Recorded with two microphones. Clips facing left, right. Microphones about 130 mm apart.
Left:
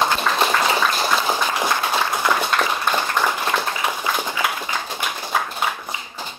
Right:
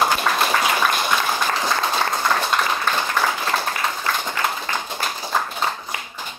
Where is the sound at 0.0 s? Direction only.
5° right (ahead or behind).